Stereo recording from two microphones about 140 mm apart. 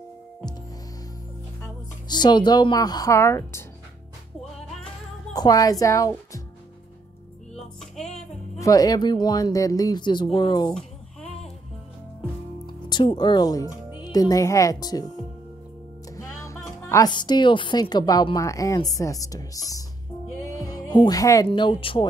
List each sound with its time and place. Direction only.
1.6 s speech: 30° left (ahead or behind)
5.3 s speech: 25° left (ahead or behind)
7.5 s music: 5° left (ahead or behind)
8.5 s speech: 25° left (ahead or behind)
10.7 s a sound: 5° left (ahead or behind)
12.6 s speech: 35° left (ahead or behind)
13.7 s music: 10° right (ahead or behind)
14.0 s speech: 25° left (ahead or behind)
16.2 s music: 20° left (ahead or behind)
16.9 s a woman's voice: 30° left (ahead or behind)